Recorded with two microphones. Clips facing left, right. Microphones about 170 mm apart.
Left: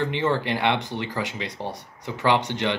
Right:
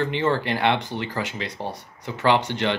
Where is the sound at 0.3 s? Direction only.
20° left (ahead or behind).